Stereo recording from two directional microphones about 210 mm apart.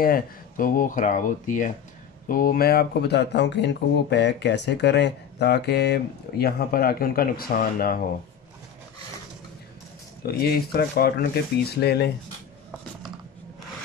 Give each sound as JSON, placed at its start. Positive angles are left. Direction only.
{"t": 0.0, "sound": "speech", "side_deg": 40}
{"t": 10.2, "sound": "speech", "side_deg": 50}